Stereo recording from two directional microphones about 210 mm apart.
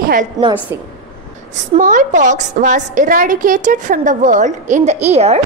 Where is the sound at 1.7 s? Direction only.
40° right (ahead or behind).